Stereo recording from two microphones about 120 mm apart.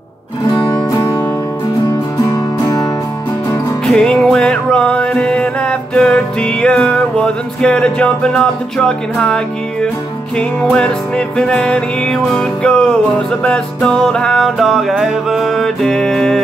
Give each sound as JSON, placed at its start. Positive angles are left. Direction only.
{"t": 3.8, "sound": "music", "side_deg": 5}